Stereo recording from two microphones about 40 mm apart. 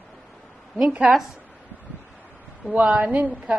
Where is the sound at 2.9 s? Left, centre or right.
Right.